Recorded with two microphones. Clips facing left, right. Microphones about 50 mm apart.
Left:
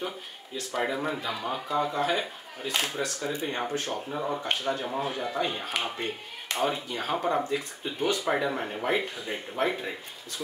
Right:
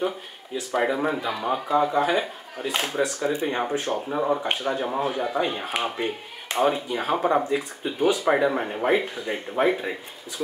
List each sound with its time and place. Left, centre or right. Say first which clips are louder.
0.6 s speech: right 6 dB; centre
4.4 s speech: right 4 dB; centre